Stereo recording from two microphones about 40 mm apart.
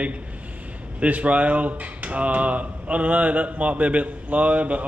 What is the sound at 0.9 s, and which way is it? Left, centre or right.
Speech, right.